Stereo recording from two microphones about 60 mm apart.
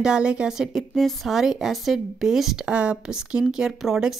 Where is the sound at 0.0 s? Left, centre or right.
Centre.